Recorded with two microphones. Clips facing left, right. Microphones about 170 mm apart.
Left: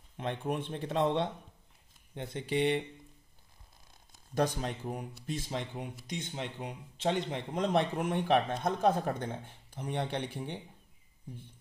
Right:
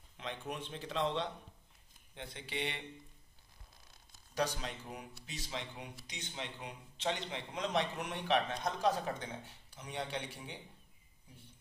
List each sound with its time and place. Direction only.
0.2 s speech: 55° left (ahead or behind)
4.4 s speech: 50° left (ahead or behind)